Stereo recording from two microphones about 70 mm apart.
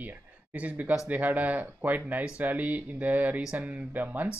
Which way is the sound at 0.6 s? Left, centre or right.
Right.